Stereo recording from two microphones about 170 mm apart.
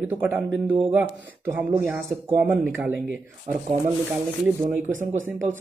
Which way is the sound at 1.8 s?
15° right (ahead or behind).